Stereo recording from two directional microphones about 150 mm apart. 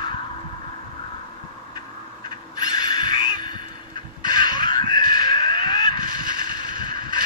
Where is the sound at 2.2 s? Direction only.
30° left (ahead or behind).